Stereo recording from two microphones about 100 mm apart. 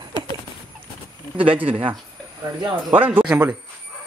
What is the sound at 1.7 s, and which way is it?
Speech, 65° right (ahead or behind).